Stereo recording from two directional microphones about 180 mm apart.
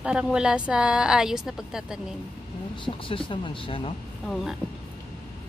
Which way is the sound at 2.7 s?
30° left (ahead or behind).